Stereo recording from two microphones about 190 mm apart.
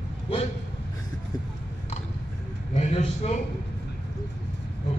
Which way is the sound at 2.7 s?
35° left (ahead or behind).